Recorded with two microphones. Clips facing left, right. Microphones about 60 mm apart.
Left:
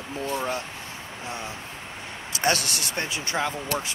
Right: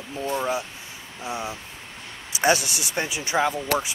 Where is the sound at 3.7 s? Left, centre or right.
Right.